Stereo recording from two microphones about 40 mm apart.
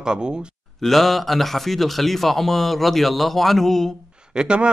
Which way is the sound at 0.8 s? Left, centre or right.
Centre.